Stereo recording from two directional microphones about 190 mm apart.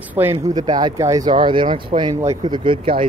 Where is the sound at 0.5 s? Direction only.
20° right (ahead or behind).